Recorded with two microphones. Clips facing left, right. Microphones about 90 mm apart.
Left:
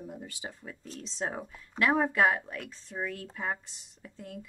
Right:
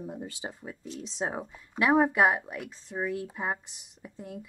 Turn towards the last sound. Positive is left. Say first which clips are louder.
# right 2 dB
turn(degrees=-15)  # may be behind; listen again after turning